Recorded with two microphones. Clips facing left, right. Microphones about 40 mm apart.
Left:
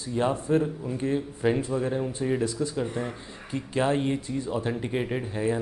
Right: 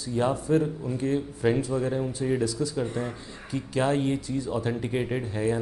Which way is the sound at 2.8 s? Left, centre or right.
Centre.